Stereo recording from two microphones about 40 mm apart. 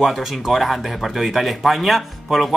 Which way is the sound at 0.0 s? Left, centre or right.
Centre.